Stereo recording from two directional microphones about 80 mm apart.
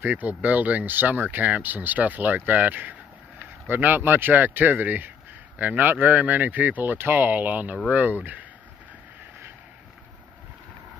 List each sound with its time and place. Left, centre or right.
0.0 s speech: right